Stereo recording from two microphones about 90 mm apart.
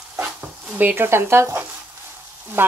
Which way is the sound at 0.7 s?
20° right (ahead or behind).